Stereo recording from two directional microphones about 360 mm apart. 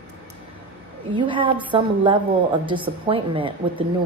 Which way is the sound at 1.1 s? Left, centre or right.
Centre.